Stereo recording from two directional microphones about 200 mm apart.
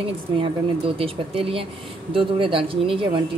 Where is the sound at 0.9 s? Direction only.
25° right (ahead or behind).